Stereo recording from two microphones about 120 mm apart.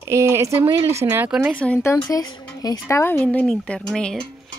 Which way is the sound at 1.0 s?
15° right (ahead or behind).